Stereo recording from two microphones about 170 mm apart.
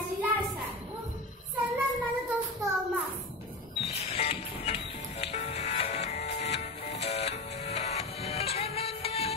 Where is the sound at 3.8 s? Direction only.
35° left (ahead or behind).